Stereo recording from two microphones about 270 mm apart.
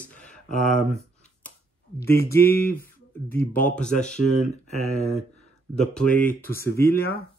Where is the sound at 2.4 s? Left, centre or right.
Left.